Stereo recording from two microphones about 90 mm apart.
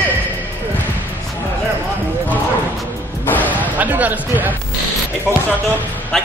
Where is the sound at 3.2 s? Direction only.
20° left (ahead or behind).